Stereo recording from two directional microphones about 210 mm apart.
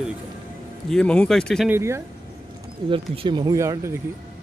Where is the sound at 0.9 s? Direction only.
5° left (ahead or behind).